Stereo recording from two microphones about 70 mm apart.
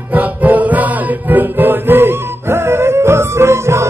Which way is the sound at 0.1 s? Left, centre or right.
Right.